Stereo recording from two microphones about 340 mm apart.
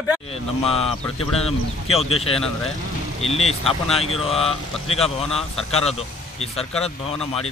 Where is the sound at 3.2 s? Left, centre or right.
Centre.